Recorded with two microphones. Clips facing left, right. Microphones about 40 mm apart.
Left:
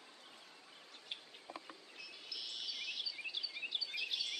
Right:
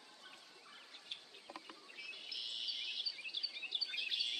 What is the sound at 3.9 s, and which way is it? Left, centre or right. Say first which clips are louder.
Bird vocalization: right 1 dB; right.